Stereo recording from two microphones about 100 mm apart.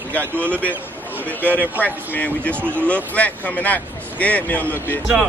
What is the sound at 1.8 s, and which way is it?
Speech, 15° left (ahead or behind).